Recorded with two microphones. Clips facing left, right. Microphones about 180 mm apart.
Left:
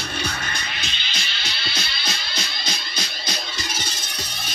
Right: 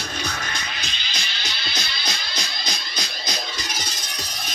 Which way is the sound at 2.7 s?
30° left (ahead or behind).